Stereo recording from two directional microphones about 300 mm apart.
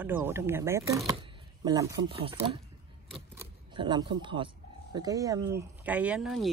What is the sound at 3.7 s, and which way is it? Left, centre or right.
Speech, centre.